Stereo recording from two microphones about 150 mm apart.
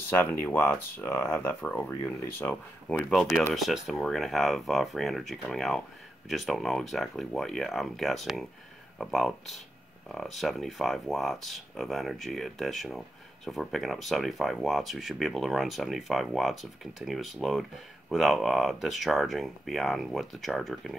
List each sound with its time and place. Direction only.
0.2 s speech: 15° left (ahead or behind)
2.9 s speech: centre (ahead or behind)